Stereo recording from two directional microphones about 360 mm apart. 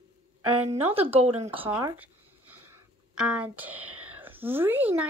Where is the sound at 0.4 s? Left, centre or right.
Right.